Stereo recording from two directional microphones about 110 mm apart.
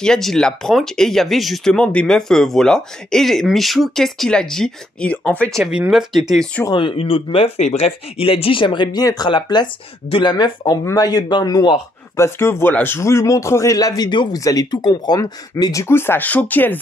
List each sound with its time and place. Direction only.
0.0 s speech: 5° left (ahead or behind)
5.6 s speech: 5° right (ahead or behind)
6.7 s speech: 50° left (ahead or behind)
10.6 s speech: 30° left (ahead or behind)
12.2 s speech: 25° left (ahead or behind)